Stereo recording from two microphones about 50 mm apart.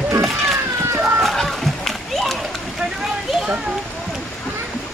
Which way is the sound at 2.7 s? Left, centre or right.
Centre.